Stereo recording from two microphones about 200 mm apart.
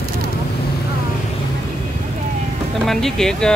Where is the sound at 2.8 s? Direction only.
Centre (ahead or behind).